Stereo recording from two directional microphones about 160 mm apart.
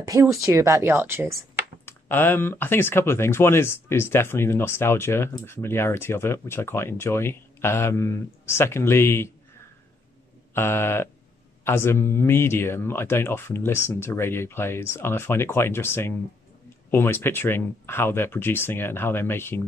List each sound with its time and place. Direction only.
0.0 s speech: 20° right (ahead or behind)
1.9 s speech: 15° left (ahead or behind)
10.5 s speech: 15° left (ahead or behind)